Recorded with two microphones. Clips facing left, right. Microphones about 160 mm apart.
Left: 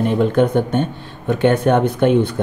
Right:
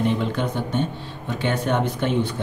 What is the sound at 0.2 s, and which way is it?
Speech, 50° left (ahead or behind).